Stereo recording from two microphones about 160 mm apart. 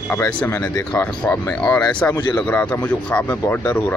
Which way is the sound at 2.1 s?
25° left (ahead or behind).